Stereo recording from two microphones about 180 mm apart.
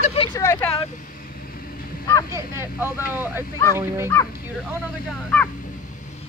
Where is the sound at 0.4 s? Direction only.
15° left (ahead or behind).